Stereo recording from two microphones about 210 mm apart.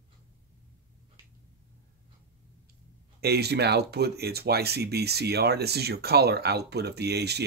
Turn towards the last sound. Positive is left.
turn(degrees=-50)  # may be behind; listen again after turning